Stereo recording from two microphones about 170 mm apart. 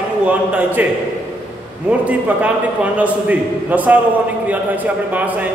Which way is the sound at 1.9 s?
10° right (ahead or behind).